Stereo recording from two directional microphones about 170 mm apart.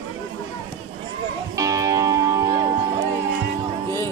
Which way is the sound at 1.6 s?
20° right (ahead or behind).